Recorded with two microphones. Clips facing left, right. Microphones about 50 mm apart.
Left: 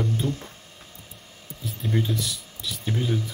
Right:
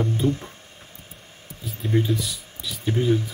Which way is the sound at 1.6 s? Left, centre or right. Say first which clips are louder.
Right 3 dB; centre.